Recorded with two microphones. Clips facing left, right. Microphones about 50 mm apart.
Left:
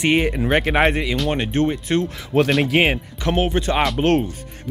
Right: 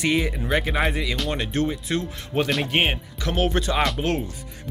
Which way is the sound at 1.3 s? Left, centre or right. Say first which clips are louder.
Left 5 dB; left.